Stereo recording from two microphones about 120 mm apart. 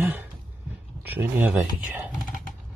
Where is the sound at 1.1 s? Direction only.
15° right (ahead or behind).